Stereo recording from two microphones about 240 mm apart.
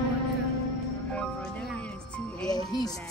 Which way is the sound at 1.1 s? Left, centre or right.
Centre.